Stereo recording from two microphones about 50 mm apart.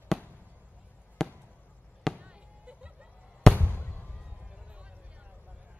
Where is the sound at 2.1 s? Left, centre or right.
Right.